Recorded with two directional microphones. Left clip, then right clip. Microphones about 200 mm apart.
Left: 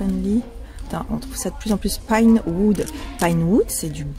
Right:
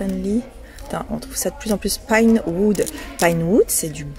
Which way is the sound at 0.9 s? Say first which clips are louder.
Right 2 dB; 5° right (ahead or behind).